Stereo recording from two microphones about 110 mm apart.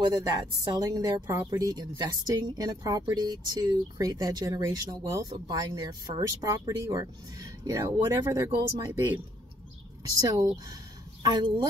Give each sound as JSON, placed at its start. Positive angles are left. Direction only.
{"t": 0.0, "sound": "speech", "side_deg": -40}
{"t": 10.0, "sound": "speech", "side_deg": -35}